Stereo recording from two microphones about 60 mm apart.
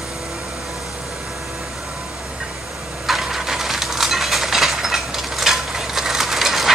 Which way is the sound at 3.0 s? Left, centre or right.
Centre.